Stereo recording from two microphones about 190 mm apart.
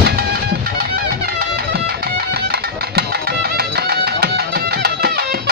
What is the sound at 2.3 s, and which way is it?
Music, 55° right (ahead or behind).